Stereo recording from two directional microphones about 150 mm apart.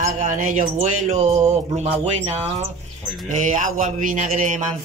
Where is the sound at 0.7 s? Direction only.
45° right (ahead or behind).